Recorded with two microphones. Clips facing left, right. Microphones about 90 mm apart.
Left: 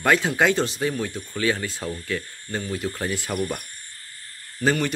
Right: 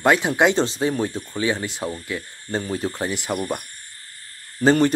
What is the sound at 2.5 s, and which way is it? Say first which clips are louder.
Speech: right 3 dB; 35° right (ahead or behind).